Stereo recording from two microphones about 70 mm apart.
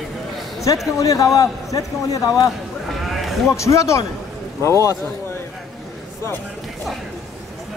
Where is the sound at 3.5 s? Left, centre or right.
Left.